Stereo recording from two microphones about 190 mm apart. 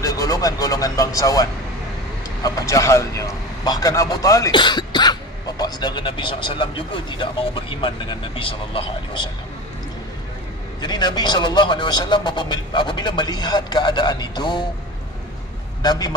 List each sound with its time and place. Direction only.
0.0 s a man's voice: 20° left (ahead or behind)
10.8 s a man's voice: 20° left (ahead or behind)
15.8 s a man's voice: 20° left (ahead or behind)